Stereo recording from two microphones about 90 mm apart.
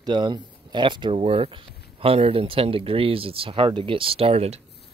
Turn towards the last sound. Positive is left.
turn(degrees=-90)